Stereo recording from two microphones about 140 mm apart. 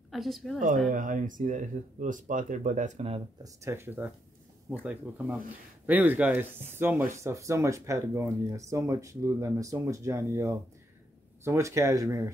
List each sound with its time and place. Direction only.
0.1 s a woman's voice: centre (ahead or behind)
0.8 s speech: 70° right (ahead or behind); by 3.2 s 55° right (ahead or behind)
3.4 s speech: 20° right (ahead or behind)